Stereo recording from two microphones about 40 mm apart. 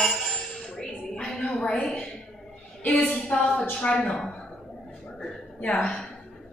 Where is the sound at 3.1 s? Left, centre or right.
Left.